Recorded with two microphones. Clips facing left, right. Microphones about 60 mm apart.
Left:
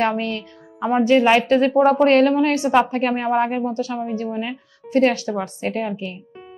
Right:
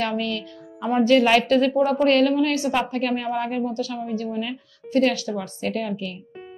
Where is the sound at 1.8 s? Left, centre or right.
Left.